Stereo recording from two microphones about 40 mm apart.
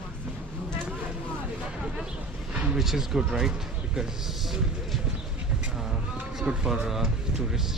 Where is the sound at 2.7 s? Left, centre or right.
Centre.